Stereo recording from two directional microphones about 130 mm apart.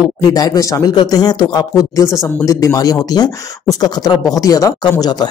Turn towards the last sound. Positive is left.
turn(degrees=30)  # may be behind; listen again after turning